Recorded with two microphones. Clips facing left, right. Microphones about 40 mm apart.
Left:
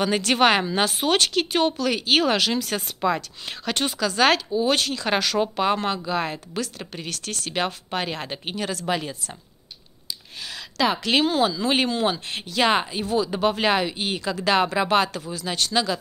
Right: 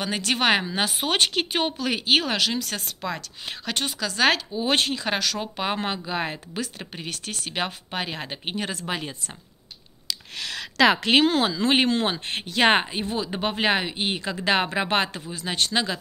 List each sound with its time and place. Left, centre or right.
0.0 s speech: centre
1.1 s speech: centre
2.2 s speech: centre
4.6 s speech: right
5.0 s speech: centre
6.0 s speech: centre
8.5 s speech: right
10.0 s a sound: right
11.2 s speech: right